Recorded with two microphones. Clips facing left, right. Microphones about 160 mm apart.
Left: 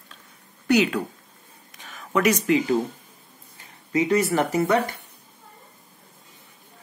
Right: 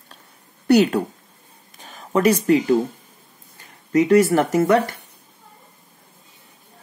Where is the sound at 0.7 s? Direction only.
35° right (ahead or behind).